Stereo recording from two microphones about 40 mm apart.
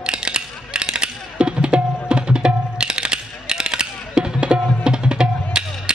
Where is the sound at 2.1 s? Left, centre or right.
Right.